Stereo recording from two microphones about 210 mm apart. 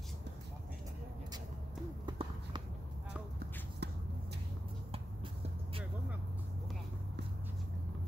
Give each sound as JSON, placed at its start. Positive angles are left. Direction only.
{"t": 2.0, "sound": "run", "side_deg": -20}
{"t": 3.8, "sound": "shuffle", "side_deg": -50}